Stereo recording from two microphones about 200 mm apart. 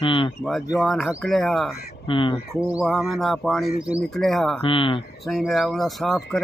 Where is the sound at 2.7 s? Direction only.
Centre (ahead or behind).